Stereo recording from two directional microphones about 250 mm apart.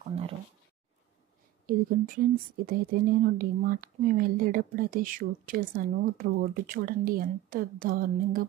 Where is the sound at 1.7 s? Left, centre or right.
Right.